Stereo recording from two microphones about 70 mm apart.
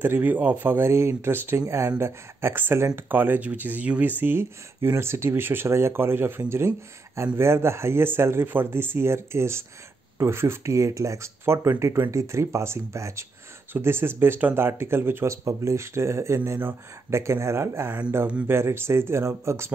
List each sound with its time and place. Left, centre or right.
0.0 s speech: right